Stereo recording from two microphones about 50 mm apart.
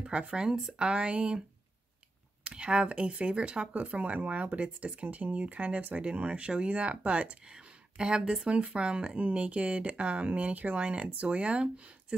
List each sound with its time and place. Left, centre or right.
0.0 s speech: centre
2.4 s speech: right
7.4 s speech: centre